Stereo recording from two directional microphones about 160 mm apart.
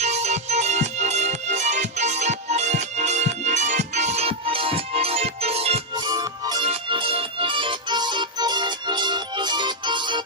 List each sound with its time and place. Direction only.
0.0 s music: 45° right (ahead or behind)
6.0 s music: 25° right (ahead or behind)